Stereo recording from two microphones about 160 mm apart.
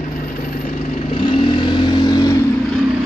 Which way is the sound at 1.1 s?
30° left (ahead or behind).